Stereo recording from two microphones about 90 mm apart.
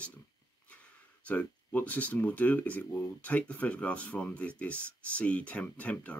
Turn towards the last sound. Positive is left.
turn(degrees=15)  # may be behind; listen again after turning